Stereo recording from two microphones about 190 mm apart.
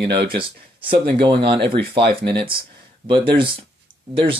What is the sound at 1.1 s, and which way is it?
Speech, 25° right (ahead or behind).